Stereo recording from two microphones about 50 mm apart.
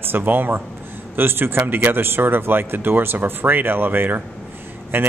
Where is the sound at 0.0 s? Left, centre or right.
Right.